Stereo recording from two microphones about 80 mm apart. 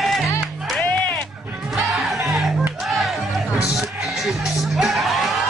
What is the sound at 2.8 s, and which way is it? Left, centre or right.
Music, centre.